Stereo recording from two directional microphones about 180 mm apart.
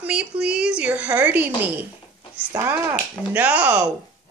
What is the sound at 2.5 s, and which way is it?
Speech, 15° right (ahead or behind).